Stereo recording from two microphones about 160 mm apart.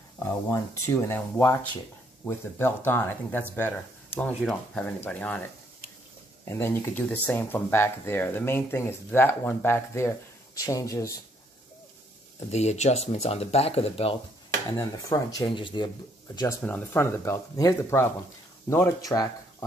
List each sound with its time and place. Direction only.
0.2 s speech: 15° left (ahead or behind)
12.4 s speech: 45° left (ahead or behind)
14.8 s speech: 20° left (ahead or behind)
16.6 s speech: 10° left (ahead or behind)